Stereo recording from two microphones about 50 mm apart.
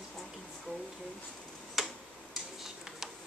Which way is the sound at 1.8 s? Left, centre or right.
Centre.